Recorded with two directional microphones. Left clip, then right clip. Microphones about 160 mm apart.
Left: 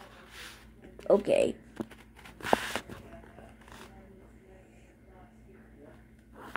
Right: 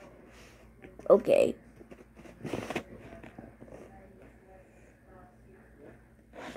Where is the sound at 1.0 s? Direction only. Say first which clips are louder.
Right 2 dB; 20° right (ahead or behind).